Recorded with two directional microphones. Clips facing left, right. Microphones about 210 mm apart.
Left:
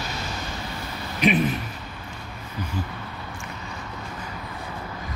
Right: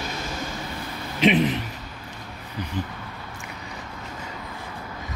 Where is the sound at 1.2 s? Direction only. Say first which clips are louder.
Right 2 dB; 25° right (ahead or behind).